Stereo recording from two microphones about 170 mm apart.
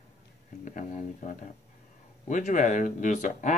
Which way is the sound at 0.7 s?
45° left (ahead or behind).